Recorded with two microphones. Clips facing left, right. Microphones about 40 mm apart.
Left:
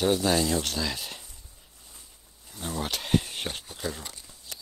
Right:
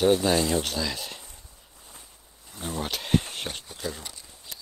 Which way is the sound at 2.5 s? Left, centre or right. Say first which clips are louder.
Right 1 dB; centre.